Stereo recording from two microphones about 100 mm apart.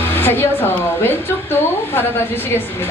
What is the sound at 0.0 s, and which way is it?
A woman's voice, 20° left (ahead or behind).